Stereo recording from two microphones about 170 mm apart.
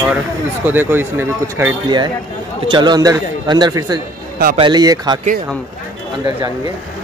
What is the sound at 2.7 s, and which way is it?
A man's voice, 25° right (ahead or behind).